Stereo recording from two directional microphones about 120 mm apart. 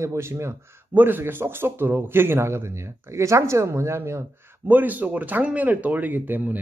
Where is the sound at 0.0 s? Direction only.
25° right (ahead or behind).